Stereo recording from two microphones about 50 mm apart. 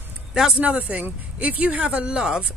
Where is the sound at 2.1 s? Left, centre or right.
Centre.